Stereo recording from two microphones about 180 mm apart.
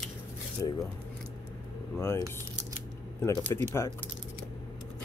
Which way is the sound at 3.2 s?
15° left (ahead or behind).